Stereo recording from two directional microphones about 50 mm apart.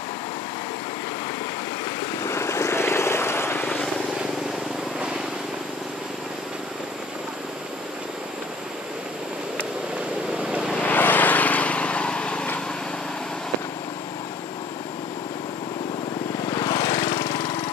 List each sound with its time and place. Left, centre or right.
2.2 s vehicle: left
10.8 s vehicle: left
16.6 s lawn mower: left